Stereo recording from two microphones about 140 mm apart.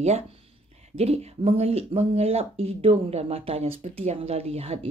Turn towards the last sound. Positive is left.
turn(degrees=-45)  # may be behind; listen again after turning